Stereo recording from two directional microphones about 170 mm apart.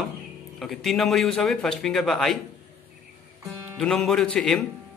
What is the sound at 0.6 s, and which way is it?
A man's voice, centre (ahead or behind).